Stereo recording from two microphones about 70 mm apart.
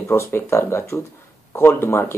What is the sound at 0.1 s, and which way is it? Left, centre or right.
Speech, left.